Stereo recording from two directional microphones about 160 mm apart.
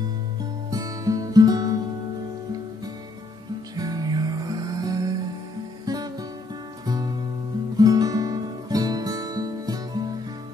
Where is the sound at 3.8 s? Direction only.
25° right (ahead or behind).